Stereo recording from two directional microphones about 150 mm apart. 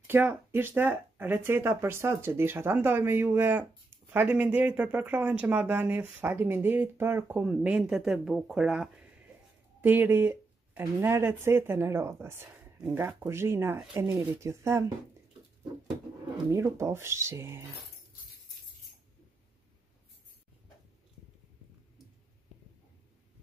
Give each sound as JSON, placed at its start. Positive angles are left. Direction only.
{"t": 0.0, "sound": "speech", "side_deg": -15}
{"t": 16.5, "sound": "speech", "side_deg": -20}